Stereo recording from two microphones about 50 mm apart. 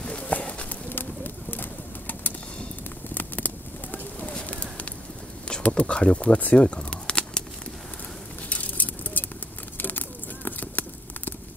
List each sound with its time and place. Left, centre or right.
0.0 s bird: left
0.8 s bird: left
3.2 s clip-clop: left
5.6 s speech: left
6.4 s a sound: left
8.5 s a sound: left